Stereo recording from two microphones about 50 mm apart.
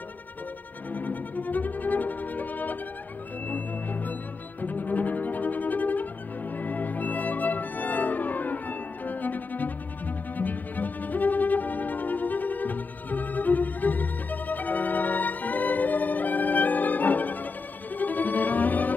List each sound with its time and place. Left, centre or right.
0.9 s violin: left
3.4 s music: left
4.6 s bowed string instrument: left
6.6 s music: left